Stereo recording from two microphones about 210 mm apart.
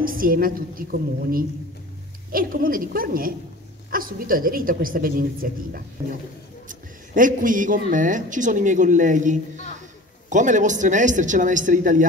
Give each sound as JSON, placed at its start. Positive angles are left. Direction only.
{"t": 0.0, "sound": "a woman's voice", "side_deg": -40}
{"t": 2.3, "sound": "a woman's voice", "side_deg": -40}